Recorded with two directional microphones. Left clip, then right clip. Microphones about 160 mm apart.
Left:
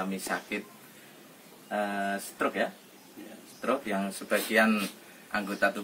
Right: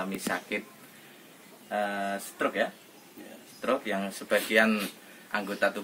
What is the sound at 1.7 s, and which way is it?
Speech, 15° right (ahead or behind).